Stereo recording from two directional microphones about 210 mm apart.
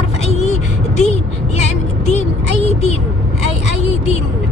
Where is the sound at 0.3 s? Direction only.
35° left (ahead or behind).